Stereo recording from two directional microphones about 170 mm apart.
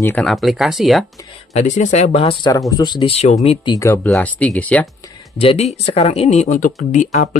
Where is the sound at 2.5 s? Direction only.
20° left (ahead or behind); by 3.7 s 35° left (ahead or behind).